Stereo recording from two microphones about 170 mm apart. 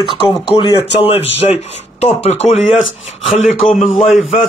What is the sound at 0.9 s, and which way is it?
A man's voice, 35° left (ahead or behind).